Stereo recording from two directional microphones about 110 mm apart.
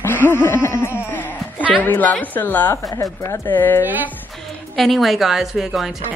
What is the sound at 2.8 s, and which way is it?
Speech, 30° left (ahead or behind).